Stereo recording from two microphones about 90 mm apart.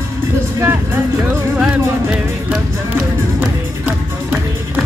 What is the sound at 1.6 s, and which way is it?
Music, 15° right (ahead or behind).